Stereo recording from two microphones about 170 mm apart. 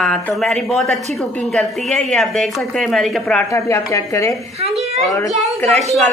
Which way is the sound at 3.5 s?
15° left (ahead or behind).